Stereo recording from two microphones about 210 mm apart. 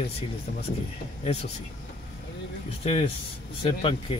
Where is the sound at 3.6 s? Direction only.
25° left (ahead or behind).